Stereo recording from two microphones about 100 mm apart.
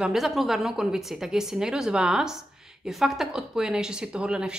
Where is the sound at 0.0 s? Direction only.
Centre (ahead or behind).